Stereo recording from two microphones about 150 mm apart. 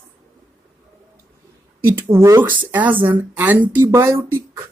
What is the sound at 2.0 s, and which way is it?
Speech, 20° right (ahead or behind).